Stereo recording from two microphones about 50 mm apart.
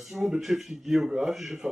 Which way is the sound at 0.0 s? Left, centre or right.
Centre.